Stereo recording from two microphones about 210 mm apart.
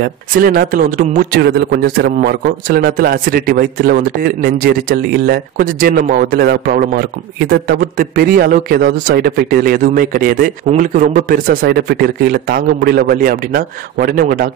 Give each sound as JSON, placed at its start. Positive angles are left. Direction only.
{"t": 0.0, "sound": "a man's voice", "side_deg": -45}